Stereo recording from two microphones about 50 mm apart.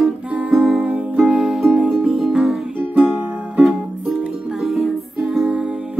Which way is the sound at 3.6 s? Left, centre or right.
Centre.